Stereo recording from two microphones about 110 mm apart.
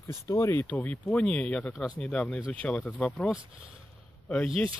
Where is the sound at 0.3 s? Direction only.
25° left (ahead or behind).